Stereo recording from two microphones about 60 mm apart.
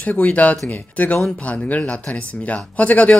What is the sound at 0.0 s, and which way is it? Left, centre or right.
Speech, left.